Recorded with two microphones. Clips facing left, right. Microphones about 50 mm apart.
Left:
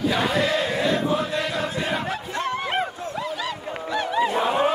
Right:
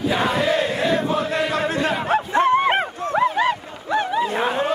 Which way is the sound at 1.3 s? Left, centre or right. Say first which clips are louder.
Right 4 dB; right.